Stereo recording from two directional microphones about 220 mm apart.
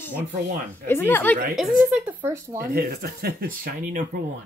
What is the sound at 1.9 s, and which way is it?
Speech, 5° right (ahead or behind).